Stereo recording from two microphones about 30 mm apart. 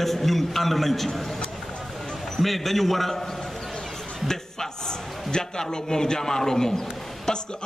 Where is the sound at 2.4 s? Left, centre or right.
Centre.